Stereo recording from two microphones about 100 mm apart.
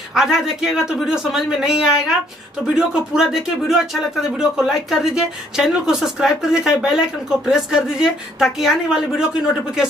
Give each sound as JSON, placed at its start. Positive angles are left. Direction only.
{"t": 0.1, "sound": "speech", "side_deg": -5}